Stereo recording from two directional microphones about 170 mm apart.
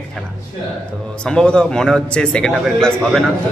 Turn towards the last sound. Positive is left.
turn(degrees=5)  # may be behind; listen again after turning